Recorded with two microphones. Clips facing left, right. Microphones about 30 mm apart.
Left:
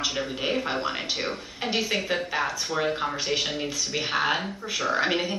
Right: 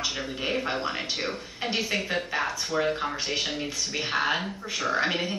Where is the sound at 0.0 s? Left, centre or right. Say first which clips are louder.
Left 2 dB; centre.